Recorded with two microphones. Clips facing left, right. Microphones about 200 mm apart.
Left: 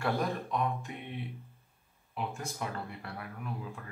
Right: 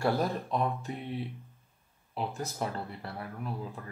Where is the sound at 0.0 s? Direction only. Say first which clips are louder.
Right 3 dB; 35° right (ahead or behind).